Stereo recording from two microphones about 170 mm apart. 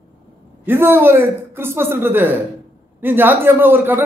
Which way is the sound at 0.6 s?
10° right (ahead or behind).